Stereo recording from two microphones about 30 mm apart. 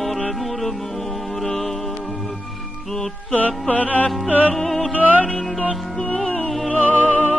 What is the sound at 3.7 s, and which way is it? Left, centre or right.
Music, left.